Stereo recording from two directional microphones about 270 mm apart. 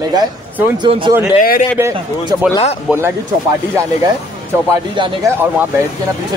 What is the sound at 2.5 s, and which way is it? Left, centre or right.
Speech, left.